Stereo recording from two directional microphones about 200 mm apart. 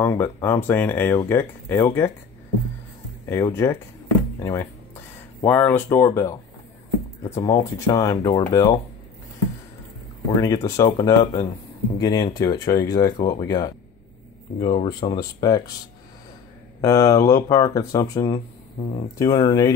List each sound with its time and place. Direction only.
0.0 s speech: 10° left (ahead or behind)
3.3 s speech: 15° left (ahead or behind)
7.3 s speech: 15° left (ahead or behind)
10.3 s speech: 15° left (ahead or behind)
16.8 s speech: 15° left (ahead or behind)